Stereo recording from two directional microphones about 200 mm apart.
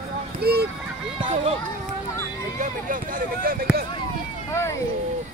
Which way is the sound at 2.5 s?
40° right (ahead or behind).